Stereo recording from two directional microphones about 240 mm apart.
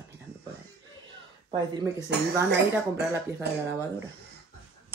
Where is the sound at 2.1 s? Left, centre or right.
Right.